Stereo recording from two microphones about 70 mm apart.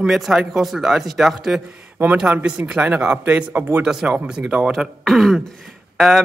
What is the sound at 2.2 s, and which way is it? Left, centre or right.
Speech, centre.